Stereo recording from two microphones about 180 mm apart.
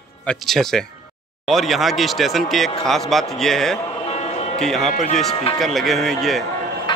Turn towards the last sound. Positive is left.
turn(degrees=25)  # may be behind; listen again after turning